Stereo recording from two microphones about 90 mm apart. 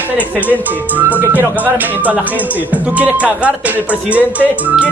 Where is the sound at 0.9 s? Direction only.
20° right (ahead or behind).